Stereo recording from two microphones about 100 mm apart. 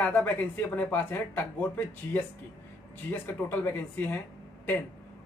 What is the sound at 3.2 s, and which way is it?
Speech, 20° left (ahead or behind).